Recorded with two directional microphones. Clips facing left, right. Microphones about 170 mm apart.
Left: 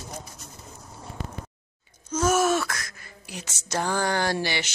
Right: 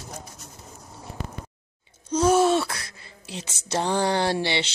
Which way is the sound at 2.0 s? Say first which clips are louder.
Right 3 dB; 30° right (ahead or behind).